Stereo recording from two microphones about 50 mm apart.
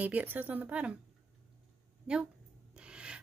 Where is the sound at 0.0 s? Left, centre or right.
Right.